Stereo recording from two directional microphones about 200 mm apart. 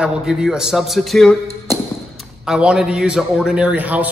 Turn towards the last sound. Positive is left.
turn(degrees=-10)  # may be behind; listen again after turning